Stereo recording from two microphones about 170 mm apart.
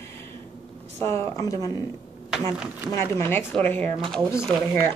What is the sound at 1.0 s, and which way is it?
Speech, 20° left (ahead or behind).